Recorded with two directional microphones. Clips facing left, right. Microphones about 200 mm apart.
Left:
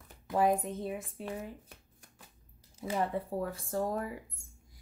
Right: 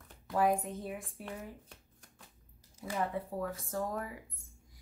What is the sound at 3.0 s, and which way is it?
Speech, 30° left (ahead or behind).